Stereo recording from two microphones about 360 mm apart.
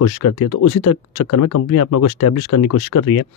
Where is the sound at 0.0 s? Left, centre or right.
Left.